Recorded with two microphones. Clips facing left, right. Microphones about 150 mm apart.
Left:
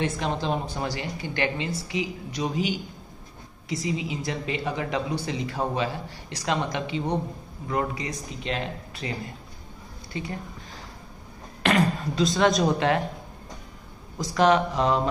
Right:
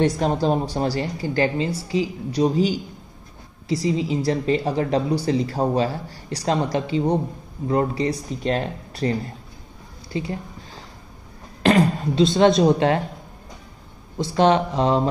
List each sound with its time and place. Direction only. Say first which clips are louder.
0.0 s a woman's voice: right 7 dB; 40° right (ahead or behind)
10.1 s a woman's voice: right 6 dB; 30° right (ahead or behind)
11.6 s speech: right 5 dB; 30° right (ahead or behind)
14.1 s speech: right 3 dB; 30° right (ahead or behind)